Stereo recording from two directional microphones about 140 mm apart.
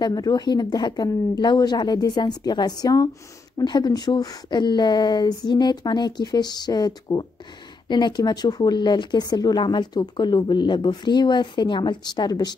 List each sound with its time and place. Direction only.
0.0 s speech: 30° left (ahead or behind)